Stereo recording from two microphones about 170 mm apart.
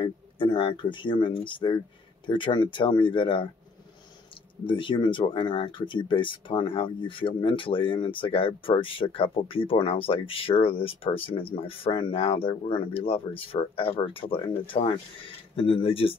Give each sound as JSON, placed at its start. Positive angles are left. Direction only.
{"t": 0.0, "sound": "speech", "side_deg": 30}
{"t": 4.6, "sound": "speech", "side_deg": 30}